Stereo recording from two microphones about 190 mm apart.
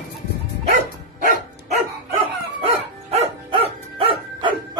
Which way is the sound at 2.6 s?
30° right (ahead or behind).